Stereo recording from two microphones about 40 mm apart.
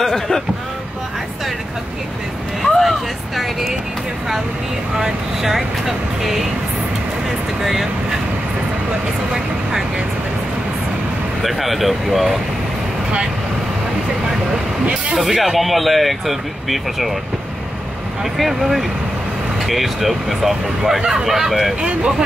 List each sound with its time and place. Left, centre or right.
0.0 s a sound: centre
2.6 s a sound: centre
4.9 s speech: centre
7.6 s speech: centre
9.3 s speech: centre
11.4 s speech: centre
14.5 s speech: right
15.1 s speech: centre
18.2 s speech: centre